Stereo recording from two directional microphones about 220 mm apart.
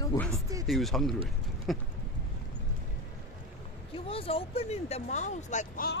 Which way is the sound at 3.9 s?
25° left (ahead or behind).